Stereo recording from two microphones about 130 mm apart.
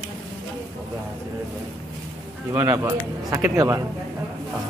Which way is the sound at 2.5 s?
20° right (ahead or behind).